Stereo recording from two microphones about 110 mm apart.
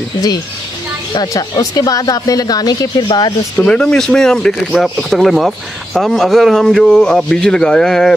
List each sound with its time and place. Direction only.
1.1 s speech: 35° left (ahead or behind)
3.5 s speech: 10° left (ahead or behind)